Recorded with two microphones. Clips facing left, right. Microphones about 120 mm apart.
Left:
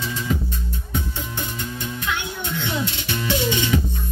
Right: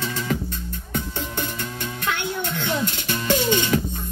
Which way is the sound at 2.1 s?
50° right (ahead or behind).